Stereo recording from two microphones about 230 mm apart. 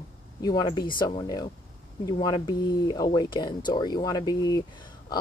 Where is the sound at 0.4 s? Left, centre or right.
Centre.